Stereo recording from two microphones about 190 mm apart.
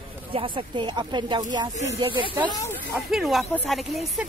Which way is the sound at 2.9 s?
Centre (ahead or behind).